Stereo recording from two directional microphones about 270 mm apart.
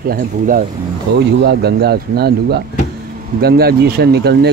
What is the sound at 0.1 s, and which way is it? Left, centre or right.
Speech, right.